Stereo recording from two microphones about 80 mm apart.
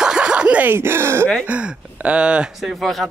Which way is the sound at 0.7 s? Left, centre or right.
Right.